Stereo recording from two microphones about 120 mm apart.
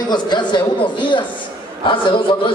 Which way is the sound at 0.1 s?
40° left (ahead or behind).